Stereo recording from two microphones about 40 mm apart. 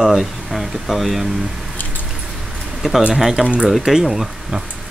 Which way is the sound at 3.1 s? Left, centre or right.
Centre.